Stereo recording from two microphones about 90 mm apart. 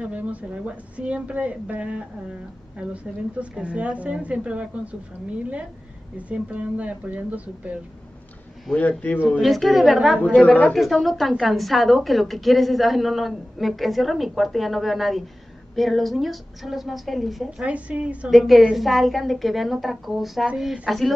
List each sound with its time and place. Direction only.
0.0 s speech: 15° right (ahead or behind)
8.7 s speech: 15° left (ahead or behind)
9.4 s a woman's voice: centre (ahead or behind)
10.4 s speech: 15° left (ahead or behind)
10.7 s a woman's voice: centre (ahead or behind)
18.3 s a woman's voice: centre (ahead or behind)